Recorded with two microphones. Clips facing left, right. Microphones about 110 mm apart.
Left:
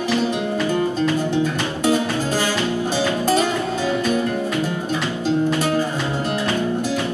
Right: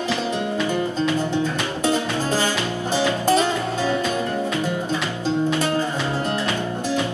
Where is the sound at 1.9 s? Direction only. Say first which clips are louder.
Left 2 dB; 20° right (ahead or behind).